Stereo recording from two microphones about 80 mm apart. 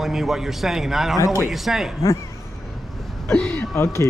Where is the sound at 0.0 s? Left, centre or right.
Centre.